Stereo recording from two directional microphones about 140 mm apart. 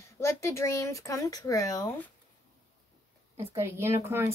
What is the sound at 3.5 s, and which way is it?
Speech, 20° right (ahead or behind).